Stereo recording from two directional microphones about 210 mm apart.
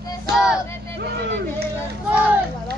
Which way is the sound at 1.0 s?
50° right (ahead or behind).